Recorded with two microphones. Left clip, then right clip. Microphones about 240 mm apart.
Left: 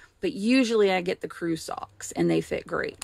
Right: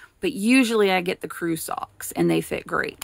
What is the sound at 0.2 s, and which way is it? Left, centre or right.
Speech, centre.